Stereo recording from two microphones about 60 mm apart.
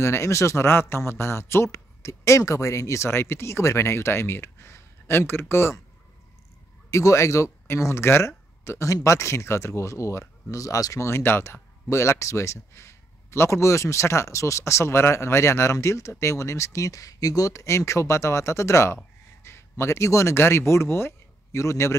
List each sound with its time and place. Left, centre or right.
0.0 s speech: left
6.9 s speech: left
11.1 s speech: left
20.3 s speech: left